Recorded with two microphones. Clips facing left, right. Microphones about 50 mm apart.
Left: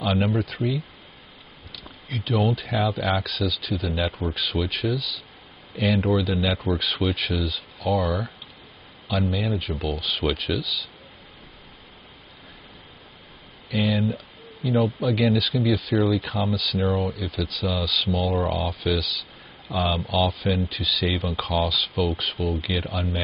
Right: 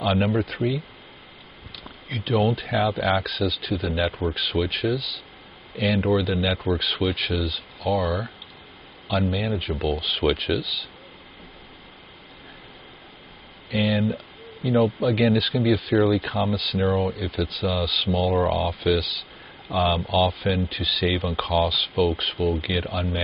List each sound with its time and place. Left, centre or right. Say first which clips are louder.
0.0 s speech: right 1 dB; centre
2.0 s speech: right 2 dB; centre
13.7 s speech: right 1 dB; centre